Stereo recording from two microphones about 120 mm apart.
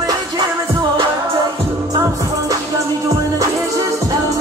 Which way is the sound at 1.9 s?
30° right (ahead or behind).